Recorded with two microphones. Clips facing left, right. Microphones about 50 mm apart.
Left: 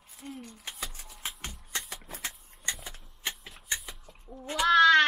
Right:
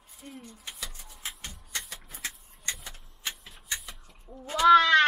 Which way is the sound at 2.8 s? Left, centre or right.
Left.